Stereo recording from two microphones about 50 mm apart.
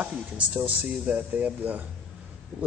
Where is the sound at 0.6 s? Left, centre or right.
Right.